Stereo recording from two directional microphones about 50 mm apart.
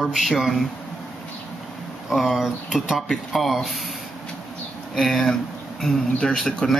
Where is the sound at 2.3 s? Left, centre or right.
Centre.